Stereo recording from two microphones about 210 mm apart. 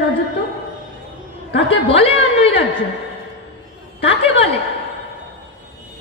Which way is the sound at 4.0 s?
25° left (ahead or behind).